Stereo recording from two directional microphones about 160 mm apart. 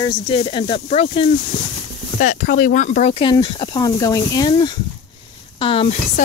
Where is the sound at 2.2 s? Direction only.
55° left (ahead or behind).